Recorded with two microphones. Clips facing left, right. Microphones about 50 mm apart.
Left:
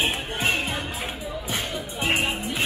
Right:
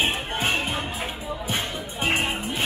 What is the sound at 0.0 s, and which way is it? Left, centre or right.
Music, right.